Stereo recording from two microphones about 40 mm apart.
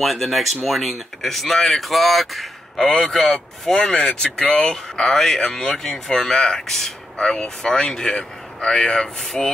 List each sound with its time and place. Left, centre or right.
0.0 s speech: centre
2.9 s speech: centre
3.7 s speech: left; by 9.5 s centre